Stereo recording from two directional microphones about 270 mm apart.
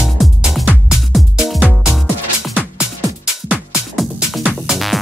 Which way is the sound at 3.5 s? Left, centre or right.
Centre.